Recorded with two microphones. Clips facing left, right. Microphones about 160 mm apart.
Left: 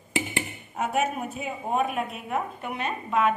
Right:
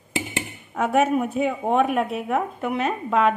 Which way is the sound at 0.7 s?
65° right (ahead or behind).